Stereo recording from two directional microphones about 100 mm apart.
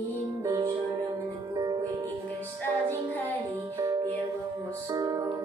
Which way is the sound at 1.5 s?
40° right (ahead or behind).